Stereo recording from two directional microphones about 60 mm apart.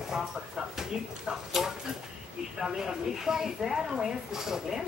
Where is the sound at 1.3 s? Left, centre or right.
Centre.